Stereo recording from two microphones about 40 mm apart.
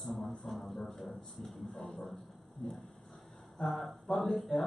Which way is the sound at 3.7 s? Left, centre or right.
Centre.